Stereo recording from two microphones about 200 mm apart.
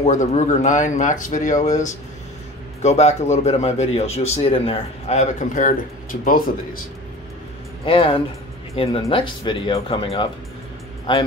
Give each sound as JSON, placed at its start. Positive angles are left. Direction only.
{"t": 0.0, "sound": "a man's voice", "side_deg": 35}
{"t": 7.8, "sound": "speech", "side_deg": 25}